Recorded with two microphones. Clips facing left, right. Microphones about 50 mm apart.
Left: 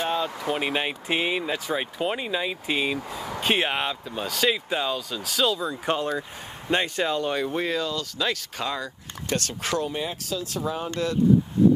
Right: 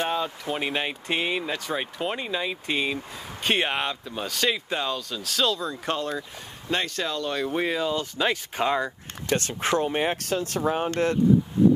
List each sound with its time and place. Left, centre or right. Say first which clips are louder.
0.0 s speech: left 1 dB; centre
6.7 s speech: left 3 dB; centre
7.3 s speech: even; centre
7.6 s speech: right 1 dB; centre
7.9 s speech: right 2 dB; right
9.9 s speech: right 5 dB; right